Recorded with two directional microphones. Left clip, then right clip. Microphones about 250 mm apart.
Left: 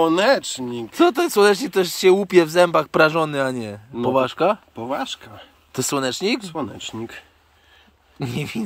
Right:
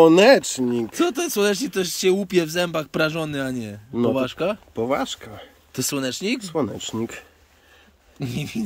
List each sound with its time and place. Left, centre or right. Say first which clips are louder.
0.0 s speech: right 4 dB; right
0.9 s speech: left 9 dB; centre
4.8 s speech: right 1 dB; right
5.7 s speech: left 3 dB; centre
6.4 s speech: right 3 dB; right
8.2 s speech: left 2 dB; centre